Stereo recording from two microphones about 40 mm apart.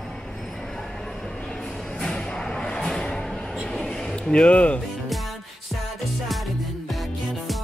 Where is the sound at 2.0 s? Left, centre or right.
Centre; by 4.8 s left.